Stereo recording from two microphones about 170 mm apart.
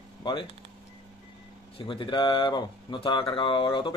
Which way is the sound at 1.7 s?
30° left (ahead or behind).